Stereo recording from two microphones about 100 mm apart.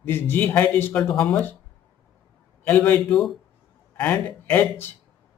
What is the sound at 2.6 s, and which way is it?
Speech, 15° left (ahead or behind).